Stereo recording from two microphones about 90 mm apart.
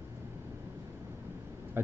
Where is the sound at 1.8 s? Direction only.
25° right (ahead or behind).